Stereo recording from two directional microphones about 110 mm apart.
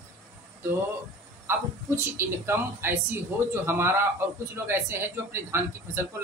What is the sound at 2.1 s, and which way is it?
A man's voice, 20° right (ahead or behind).